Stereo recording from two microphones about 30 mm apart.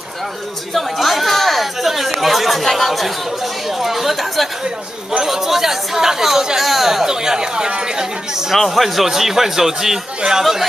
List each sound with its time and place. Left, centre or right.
0.7 s chatter: centre
5.2 s a man's voice: centre
7.1 s speech: right
8.6 s a man's voice: centre